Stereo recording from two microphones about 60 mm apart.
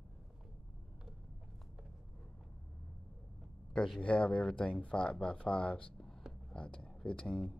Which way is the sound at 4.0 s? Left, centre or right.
Centre.